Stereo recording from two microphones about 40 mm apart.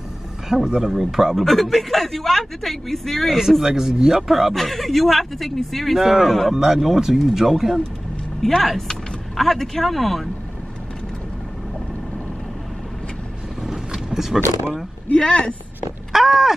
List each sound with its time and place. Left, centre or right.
0.7 s speech: centre
1.4 s speech: centre
3.3 s speech: centre
4.6 s speech: centre
5.9 s speech: centre
8.4 s speech: centre
13.7 s vehicle: centre
15.1 s speech: left
16.1 s a sound: centre